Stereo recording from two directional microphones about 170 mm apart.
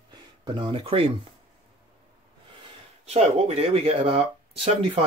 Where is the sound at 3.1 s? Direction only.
40° right (ahead or behind).